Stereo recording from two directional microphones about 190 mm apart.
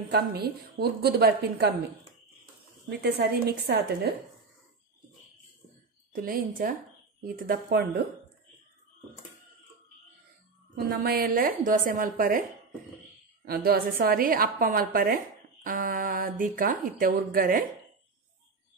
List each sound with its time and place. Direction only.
0.1 s a woman's voice: 55° right (ahead or behind)
2.9 s a woman's voice: 60° right (ahead or behind)
6.1 s speech: 50° right (ahead or behind)
10.7 s speech: 55° right (ahead or behind)
13.5 s speech: 50° right (ahead or behind)